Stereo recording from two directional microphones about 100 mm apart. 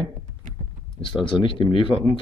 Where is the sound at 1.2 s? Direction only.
55° left (ahead or behind).